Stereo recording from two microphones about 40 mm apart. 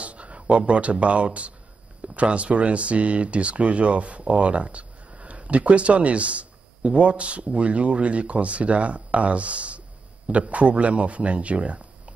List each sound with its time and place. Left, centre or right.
0.0 s speech: right